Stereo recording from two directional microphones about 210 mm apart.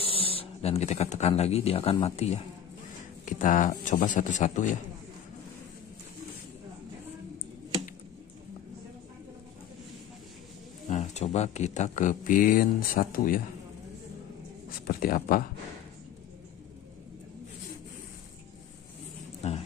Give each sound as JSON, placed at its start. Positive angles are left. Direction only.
{"t": 0.0, "sound": "speech", "side_deg": 25}
{"t": 10.9, "sound": "speech", "side_deg": 35}
{"t": 14.9, "sound": "speech", "side_deg": 45}
{"t": 19.4, "sound": "a sound", "side_deg": 30}